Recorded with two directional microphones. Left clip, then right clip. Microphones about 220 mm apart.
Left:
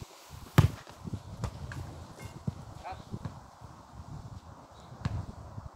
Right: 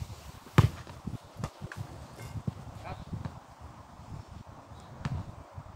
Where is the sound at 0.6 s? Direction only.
50° left (ahead or behind).